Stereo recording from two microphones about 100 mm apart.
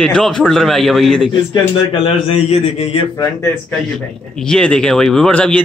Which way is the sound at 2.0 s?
85° left.